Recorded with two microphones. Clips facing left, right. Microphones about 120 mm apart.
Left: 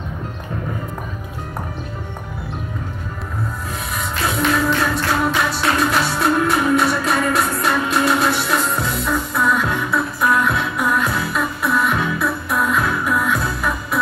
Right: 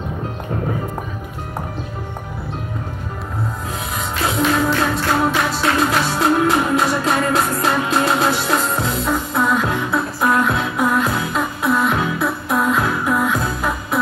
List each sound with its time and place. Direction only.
4.6 s music: 30° right (ahead or behind)